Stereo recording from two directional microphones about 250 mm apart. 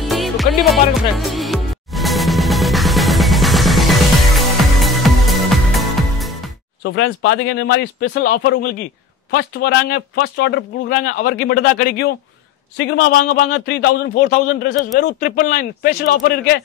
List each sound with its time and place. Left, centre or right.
0.0 s music: centre
6.8 s speech: left
12.7 s speech: left
13.2 s speech: left